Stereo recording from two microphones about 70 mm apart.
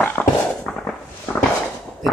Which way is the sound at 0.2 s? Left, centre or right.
Centre.